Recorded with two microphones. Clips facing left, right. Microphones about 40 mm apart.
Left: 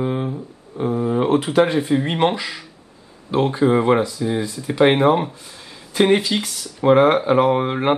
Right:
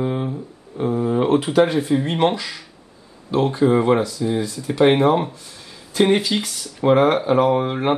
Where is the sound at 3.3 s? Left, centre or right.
Centre.